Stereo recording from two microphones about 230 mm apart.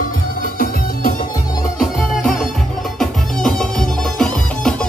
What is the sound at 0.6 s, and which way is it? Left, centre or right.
Music, left.